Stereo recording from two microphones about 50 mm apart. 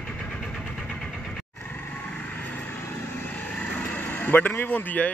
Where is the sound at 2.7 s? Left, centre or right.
Left.